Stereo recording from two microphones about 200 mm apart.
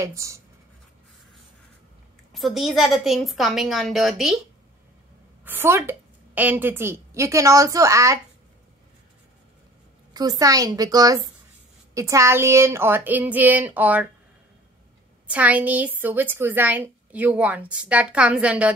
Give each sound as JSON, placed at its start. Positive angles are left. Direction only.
{"t": 0.0, "sound": "a woman's voice", "side_deg": -15}
{"t": 2.3, "sound": "a woman's voice", "side_deg": 0}
{"t": 5.4, "sound": "a woman's voice", "side_deg": -10}
{"t": 10.1, "sound": "a woman's voice", "side_deg": -20}
{"t": 15.2, "sound": "a woman's voice", "side_deg": -5}